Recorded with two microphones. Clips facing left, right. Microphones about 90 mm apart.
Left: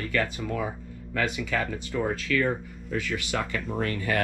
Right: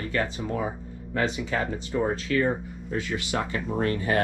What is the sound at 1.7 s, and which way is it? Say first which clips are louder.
Speech: right 2 dB; 30° right (ahead or behind).